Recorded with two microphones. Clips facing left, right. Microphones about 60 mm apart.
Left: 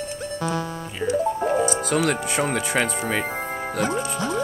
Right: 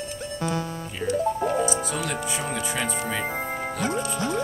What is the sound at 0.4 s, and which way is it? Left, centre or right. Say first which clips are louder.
Music: left 1 dB; left.